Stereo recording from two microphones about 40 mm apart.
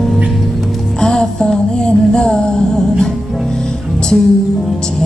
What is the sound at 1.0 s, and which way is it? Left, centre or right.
Music, centre.